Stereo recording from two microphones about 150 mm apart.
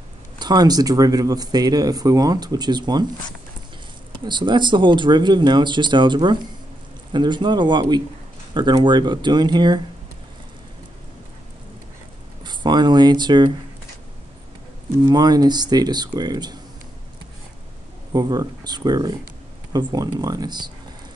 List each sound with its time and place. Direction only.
0.4 s speech: 25° right (ahead or behind)
4.3 s speech: 30° right (ahead or behind)
12.4 s speech: 30° right (ahead or behind)
15.0 s speech: 25° right (ahead or behind)
18.1 s speech: 25° right (ahead or behind)